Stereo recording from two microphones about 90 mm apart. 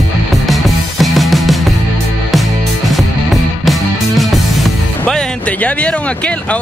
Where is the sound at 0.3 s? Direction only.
Centre (ahead or behind).